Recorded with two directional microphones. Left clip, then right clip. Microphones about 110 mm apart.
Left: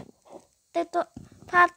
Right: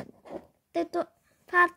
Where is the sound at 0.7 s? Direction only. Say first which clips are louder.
Left 3 dB; 35° left (ahead or behind).